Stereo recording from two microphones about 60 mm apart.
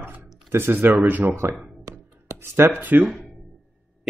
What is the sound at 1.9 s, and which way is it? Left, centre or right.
Writing, right.